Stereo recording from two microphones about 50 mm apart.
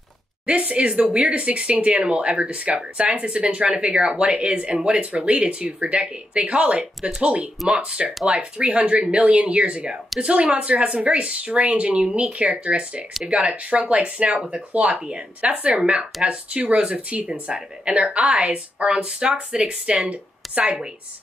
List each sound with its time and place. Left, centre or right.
0.5 s speech: right